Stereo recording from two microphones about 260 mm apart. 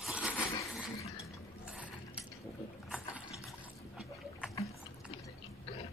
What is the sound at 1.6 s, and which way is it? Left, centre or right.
Mechanisms, centre.